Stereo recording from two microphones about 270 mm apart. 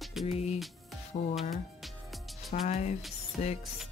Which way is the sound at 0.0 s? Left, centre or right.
Centre.